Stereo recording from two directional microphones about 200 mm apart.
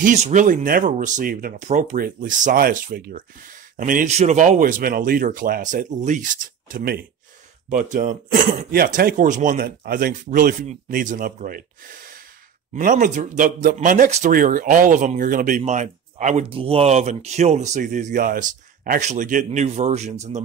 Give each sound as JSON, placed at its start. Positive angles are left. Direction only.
{"t": 0.0, "sound": "speech", "side_deg": -35}
{"t": 7.7, "sound": "speech", "side_deg": -40}
{"t": 12.7, "sound": "speech", "side_deg": -40}